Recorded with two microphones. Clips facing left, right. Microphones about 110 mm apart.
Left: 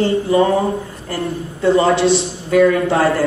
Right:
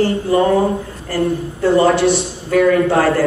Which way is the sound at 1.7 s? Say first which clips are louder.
Right 1 dB; 25° left (ahead or behind).